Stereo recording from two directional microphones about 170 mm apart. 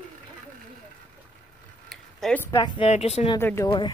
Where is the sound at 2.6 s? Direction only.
25° left (ahead or behind).